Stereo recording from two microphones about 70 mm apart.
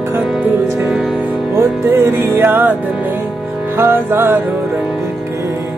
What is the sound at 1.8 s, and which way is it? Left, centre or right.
Music, right.